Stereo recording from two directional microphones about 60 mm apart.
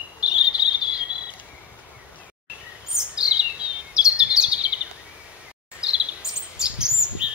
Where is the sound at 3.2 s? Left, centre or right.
Centre.